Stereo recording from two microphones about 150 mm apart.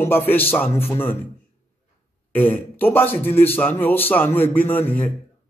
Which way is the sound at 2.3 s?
15° left (ahead or behind).